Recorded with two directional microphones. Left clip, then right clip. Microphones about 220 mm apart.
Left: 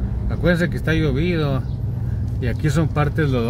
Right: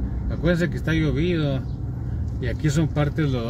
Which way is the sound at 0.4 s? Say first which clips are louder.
Left 4 dB; 20° left (ahead or behind).